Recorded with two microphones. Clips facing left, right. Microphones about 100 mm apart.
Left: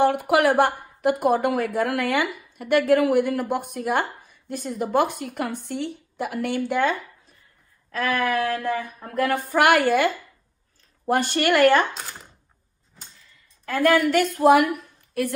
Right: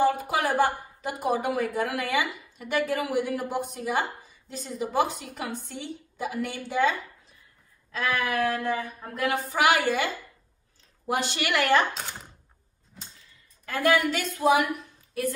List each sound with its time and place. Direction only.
0.0 s a woman's voice: 65° left (ahead or behind)
7.9 s a woman's voice: 45° left (ahead or behind)
11.9 s speech: centre (ahead or behind)
13.7 s a woman's voice: 45° left (ahead or behind); by 15.3 s 60° left (ahead or behind)